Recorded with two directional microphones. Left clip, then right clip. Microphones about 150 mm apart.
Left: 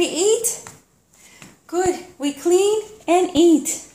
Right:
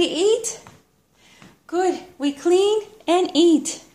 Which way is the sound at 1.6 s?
25° right (ahead or behind).